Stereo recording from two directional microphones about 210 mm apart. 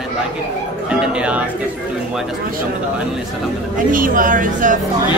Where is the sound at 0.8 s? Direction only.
5° right (ahead or behind).